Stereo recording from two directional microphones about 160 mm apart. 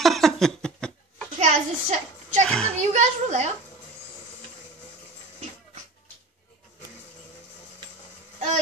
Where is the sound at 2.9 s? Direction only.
45° right (ahead or behind).